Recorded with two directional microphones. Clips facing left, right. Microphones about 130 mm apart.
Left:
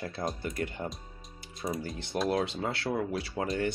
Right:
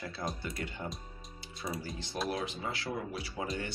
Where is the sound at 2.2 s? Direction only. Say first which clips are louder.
Left 7 dB; 65° left (ahead or behind).